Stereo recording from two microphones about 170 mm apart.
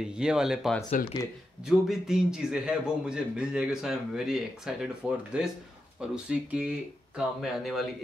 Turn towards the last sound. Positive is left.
turn(degrees=0)  # may be behind; listen again after turning